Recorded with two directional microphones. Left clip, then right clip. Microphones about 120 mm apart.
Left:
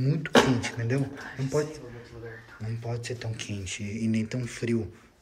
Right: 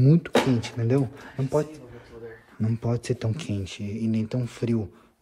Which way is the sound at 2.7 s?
50° right (ahead or behind).